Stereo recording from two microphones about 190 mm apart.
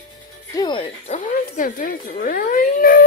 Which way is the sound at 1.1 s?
45° left (ahead or behind).